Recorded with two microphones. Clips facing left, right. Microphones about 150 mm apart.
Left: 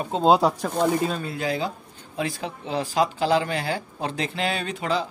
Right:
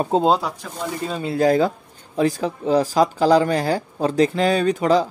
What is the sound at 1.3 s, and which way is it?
Speech, 45° right (ahead or behind).